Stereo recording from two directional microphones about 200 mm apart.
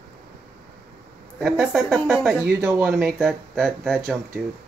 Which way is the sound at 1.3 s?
Centre (ahead or behind).